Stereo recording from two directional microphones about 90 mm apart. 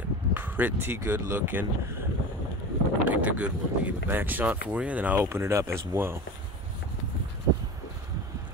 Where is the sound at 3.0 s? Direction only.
15° right (ahead or behind).